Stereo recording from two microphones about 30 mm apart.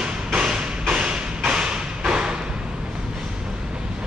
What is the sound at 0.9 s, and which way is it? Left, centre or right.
Thump, right.